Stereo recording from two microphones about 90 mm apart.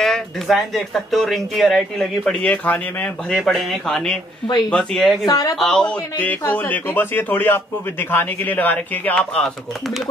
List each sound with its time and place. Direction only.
0.0 s speech: centre (ahead or behind)
2.5 s a man's voice: 15° left (ahead or behind)
3.3 s speech: centre (ahead or behind)
5.2 s speech: 40° left (ahead or behind)
5.6 s a man's voice: 5° left (ahead or behind)